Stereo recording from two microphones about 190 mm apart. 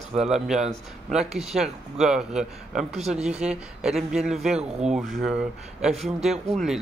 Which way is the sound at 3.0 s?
35° right (ahead or behind).